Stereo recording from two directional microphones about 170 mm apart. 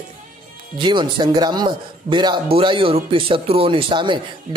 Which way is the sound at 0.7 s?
30° right (ahead or behind).